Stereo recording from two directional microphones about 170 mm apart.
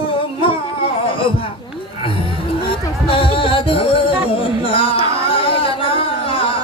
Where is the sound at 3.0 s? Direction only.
30° left (ahead or behind).